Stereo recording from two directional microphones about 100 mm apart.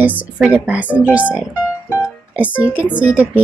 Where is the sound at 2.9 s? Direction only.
15° right (ahead or behind).